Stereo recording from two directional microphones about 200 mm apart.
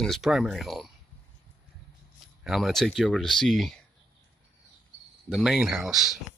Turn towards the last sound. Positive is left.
turn(degrees=0)  # may be behind; listen again after turning